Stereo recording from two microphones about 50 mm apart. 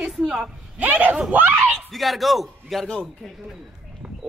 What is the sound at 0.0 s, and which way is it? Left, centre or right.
Speech, centre.